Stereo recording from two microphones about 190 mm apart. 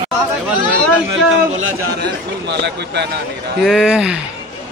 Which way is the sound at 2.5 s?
65° right (ahead or behind).